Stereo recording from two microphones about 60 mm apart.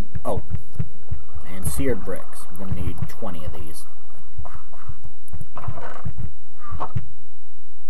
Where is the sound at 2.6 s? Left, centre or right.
Centre.